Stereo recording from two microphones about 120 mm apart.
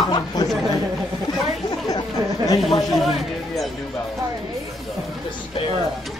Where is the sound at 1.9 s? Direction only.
30° left (ahead or behind).